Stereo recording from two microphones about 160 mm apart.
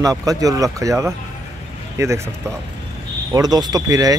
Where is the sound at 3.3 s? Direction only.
25° right (ahead or behind).